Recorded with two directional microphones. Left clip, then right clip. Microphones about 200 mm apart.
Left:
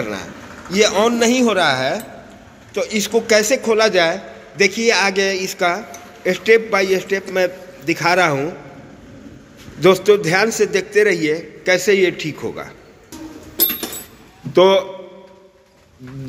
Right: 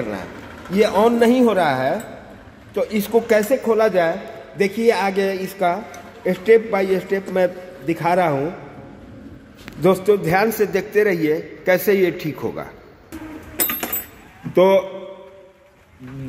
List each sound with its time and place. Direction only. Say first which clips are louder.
0.1 s a man's voice: left 1 dB; 5° right (ahead or behind)
9.8 s a man's voice: left 4 dB; 5° right (ahead or behind)
14.5 s a man's voice: left 2 dB; 5° right (ahead or behind)